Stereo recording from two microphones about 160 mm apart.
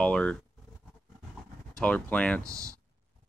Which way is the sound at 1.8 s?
10° left (ahead or behind).